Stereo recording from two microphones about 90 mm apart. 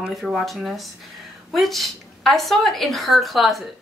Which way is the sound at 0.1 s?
Centre (ahead or behind).